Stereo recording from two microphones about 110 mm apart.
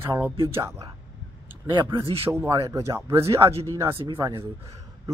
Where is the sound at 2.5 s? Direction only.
35° right (ahead or behind).